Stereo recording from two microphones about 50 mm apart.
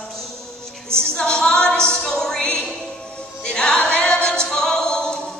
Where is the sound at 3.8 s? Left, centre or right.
Left.